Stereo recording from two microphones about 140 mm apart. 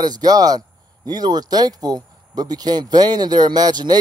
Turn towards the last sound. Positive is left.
turn(degrees=-30)  # may be behind; listen again after turning